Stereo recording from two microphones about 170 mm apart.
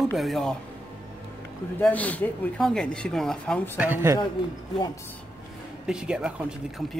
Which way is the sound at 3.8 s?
15° right (ahead or behind).